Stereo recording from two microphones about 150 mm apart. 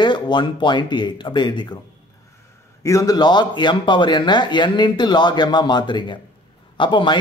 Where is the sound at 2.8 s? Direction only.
20° left (ahead or behind).